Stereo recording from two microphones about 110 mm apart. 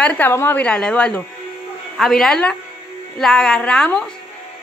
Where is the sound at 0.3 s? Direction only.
25° left (ahead or behind).